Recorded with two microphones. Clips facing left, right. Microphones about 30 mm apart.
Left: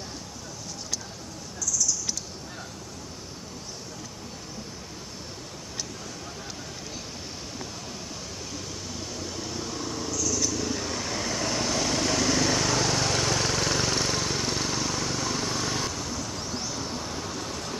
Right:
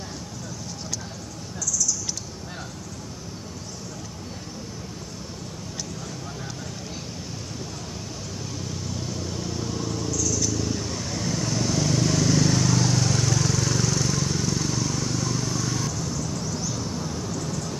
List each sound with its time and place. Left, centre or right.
8.5 s vehicle: centre; by 16.0 s left
16.0 s vehicle: left
16.7 s vehicle: centre